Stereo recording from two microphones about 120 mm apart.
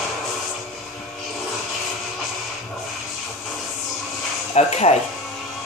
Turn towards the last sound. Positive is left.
turn(degrees=65)  # may be behind; listen again after turning